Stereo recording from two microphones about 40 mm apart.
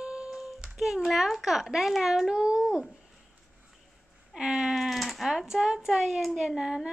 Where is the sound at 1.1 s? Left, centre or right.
Centre.